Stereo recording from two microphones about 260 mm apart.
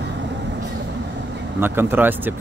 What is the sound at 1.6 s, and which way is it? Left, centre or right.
Speech, centre.